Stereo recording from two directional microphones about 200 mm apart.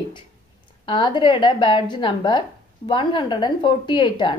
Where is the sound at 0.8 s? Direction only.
25° left (ahead or behind).